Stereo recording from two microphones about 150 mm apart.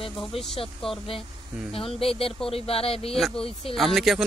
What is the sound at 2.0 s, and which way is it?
Speech, 40° left (ahead or behind).